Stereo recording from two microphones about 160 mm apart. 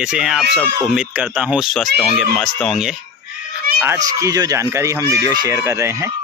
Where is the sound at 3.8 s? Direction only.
20° right (ahead or behind).